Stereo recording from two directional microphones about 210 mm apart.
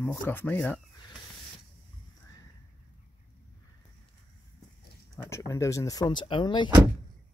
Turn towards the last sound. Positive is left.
turn(degrees=20)  # may be behind; listen again after turning